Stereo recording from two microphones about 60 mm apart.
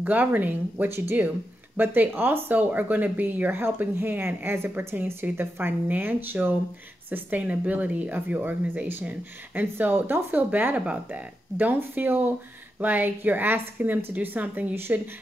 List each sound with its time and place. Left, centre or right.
0.0 s speech: right
0.8 s speech: right